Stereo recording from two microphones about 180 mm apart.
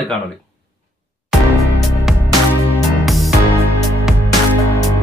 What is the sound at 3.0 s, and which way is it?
Music, centre (ahead or behind).